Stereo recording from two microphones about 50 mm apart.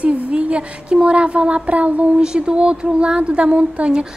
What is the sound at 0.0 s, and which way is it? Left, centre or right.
Speech, right.